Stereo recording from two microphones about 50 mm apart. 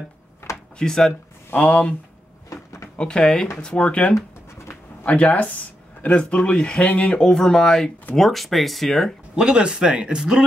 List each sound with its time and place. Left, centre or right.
0.7 s speech: centre
1.5 s speech: left
2.5 s drawer open or close: left
3.0 s speech: centre
9.3 s speech: centre